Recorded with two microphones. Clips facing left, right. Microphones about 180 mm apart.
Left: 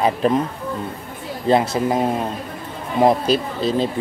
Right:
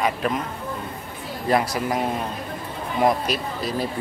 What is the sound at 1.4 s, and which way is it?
Speech, 25° left (ahead or behind).